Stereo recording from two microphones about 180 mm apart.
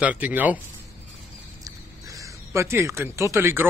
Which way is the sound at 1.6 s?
20° right (ahead or behind).